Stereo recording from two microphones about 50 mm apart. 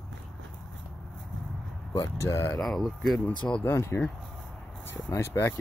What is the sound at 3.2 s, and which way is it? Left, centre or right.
Speech, left.